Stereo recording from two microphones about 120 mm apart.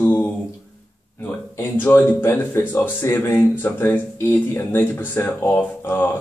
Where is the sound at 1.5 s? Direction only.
20° left (ahead or behind).